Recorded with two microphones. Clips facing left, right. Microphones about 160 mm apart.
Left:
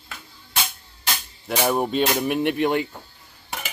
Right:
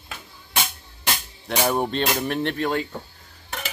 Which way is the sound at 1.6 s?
5° left (ahead or behind).